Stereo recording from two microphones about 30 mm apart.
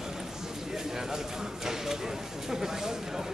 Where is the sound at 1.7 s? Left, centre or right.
Centre.